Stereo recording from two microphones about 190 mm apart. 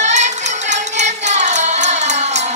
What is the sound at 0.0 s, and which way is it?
Music, 35° right (ahead or behind).